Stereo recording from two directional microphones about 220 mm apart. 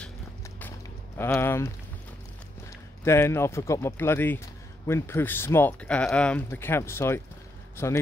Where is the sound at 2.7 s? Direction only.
10° left (ahead or behind).